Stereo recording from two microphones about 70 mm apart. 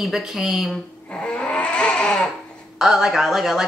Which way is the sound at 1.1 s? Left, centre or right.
Centre.